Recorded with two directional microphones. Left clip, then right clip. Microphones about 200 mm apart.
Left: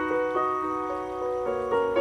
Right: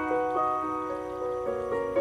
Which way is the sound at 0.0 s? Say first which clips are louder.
Left 1 dB; 5° left (ahead or behind).